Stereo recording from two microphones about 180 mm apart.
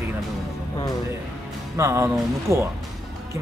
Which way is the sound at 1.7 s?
15° right (ahead or behind).